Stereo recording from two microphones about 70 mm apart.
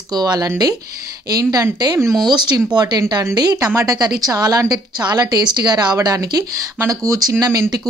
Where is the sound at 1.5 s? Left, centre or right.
Right.